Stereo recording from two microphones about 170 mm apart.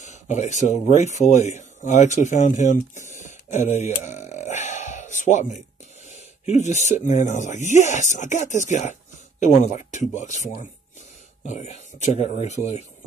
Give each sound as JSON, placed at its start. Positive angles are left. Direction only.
{"t": 0.0, "sound": "speech", "side_deg": 45}